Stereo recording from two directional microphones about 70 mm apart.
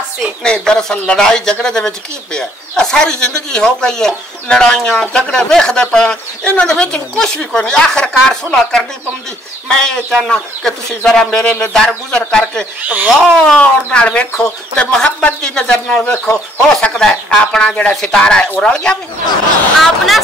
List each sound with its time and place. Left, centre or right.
0.4 s speech: centre
12.8 s speech: right
13.2 s speech: centre
13.6 s speech: centre